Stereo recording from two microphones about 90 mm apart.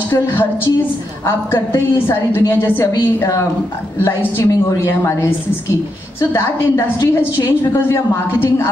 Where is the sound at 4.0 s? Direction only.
30° left (ahead or behind).